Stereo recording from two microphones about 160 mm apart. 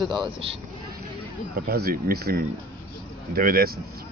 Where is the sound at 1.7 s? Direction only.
70° right (ahead or behind).